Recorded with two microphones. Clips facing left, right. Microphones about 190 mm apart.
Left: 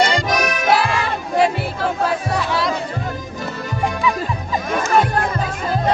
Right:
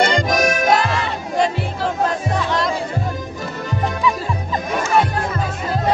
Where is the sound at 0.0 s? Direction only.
45° right (ahead or behind).